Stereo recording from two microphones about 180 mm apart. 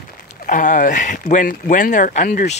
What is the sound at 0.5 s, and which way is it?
Speech, 45° left (ahead or behind).